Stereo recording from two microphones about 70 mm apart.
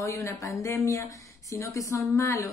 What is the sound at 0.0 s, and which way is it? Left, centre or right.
Speech, left.